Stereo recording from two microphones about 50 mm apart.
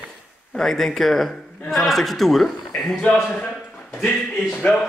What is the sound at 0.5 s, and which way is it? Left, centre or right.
A man's voice, centre.